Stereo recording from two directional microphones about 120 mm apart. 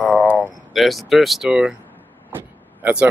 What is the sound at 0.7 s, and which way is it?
Speech, centre (ahead or behind).